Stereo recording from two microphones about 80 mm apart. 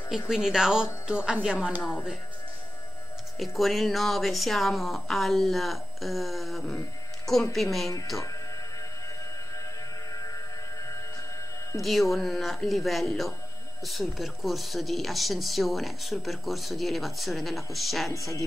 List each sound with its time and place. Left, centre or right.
0.3 s speech: centre
3.3 s speech: centre
10.1 s a sound: left
11.8 s speech: centre